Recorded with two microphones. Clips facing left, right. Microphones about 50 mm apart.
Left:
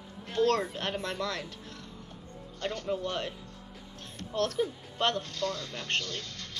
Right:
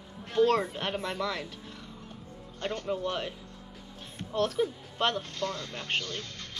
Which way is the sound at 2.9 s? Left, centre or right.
Centre.